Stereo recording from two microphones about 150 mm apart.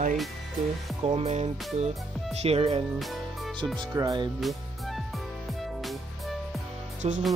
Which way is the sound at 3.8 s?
25° right (ahead or behind).